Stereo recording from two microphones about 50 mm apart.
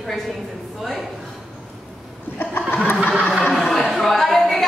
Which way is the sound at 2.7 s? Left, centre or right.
Left.